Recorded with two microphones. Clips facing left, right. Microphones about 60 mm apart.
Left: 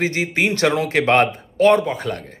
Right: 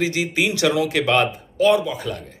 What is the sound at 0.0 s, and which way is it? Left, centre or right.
A man's voice, left.